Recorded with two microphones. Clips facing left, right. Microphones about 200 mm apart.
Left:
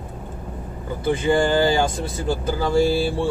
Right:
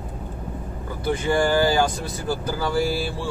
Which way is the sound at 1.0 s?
25° left (ahead or behind).